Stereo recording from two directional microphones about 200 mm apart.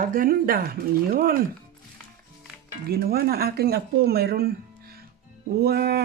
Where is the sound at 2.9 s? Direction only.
50° right (ahead or behind).